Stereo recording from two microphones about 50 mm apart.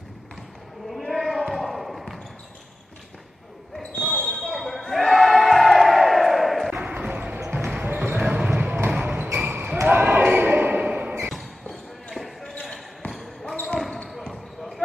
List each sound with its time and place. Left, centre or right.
0.8 s basketball bounce: centre
4.0 s basketball bounce: centre
6.9 s music: right
7.4 s basketball bounce: right
11.1 s music: centre
12.1 s basketball bounce: centre